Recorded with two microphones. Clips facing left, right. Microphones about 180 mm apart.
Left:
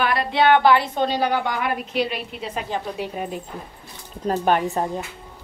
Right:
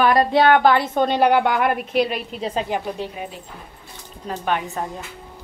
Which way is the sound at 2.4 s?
30° right (ahead or behind).